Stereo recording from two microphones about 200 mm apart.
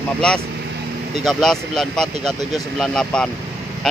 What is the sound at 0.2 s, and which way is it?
Speech, 5° left (ahead or behind).